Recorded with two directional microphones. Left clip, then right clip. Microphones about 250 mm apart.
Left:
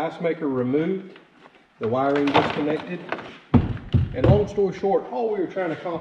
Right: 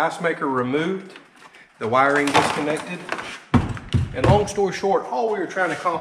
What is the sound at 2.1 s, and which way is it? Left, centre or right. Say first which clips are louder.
A man's voice: right 2 dB; centre.